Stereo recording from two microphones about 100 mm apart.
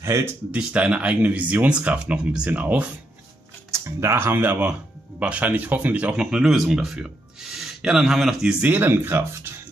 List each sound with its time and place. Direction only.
0.0 s speech: 30° right (ahead or behind)
0.5 s speech: 10° right (ahead or behind)
3.7 s speech: 30° right (ahead or behind); by 8.6 s 5° right (ahead or behind)
8.6 s speech: 20° right (ahead or behind)